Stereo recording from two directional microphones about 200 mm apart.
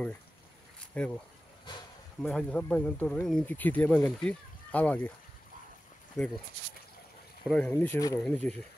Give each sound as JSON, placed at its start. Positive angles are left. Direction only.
{"t": 1.0, "sound": "speech", "side_deg": 5}
{"t": 1.7, "sound": "a sound", "side_deg": 20}
{"t": 2.2, "sound": "speech", "side_deg": 5}
{"t": 6.2, "sound": "speech", "side_deg": 0}
{"t": 7.4, "sound": "speech", "side_deg": 5}